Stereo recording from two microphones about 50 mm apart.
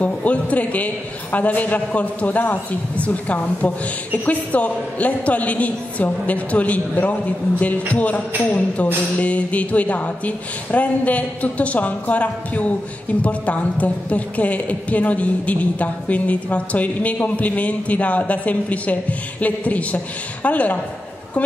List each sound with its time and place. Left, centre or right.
0.0 s a man's voice: left